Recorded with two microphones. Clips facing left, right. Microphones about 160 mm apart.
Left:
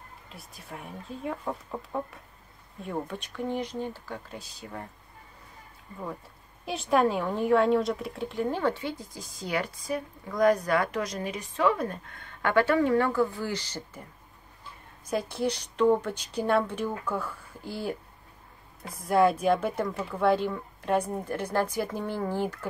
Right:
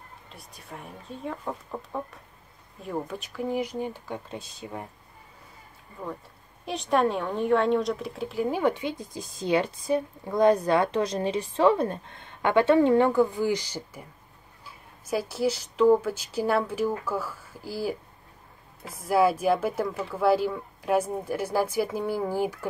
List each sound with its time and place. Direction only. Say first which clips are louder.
0.3 s speech: even; centre (ahead or behind); by 4.8 s 20° right (ahead or behind)
6.6 s speech: even; centre (ahead or behind)